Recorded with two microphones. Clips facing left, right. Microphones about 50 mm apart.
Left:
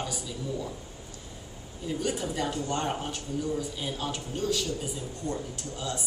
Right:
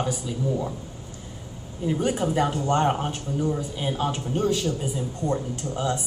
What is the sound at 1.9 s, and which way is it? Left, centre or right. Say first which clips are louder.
Speech: right 7 dB; right.